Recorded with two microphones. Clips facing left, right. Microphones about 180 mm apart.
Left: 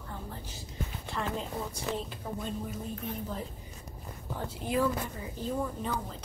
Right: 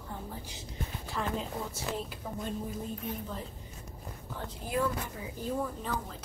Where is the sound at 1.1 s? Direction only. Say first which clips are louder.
Even; 5° right (ahead or behind).